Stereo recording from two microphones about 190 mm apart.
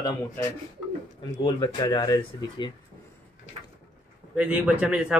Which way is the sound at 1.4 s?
20° left (ahead or behind).